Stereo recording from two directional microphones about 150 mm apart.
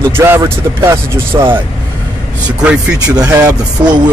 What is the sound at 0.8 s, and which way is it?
Speech, 15° right (ahead or behind).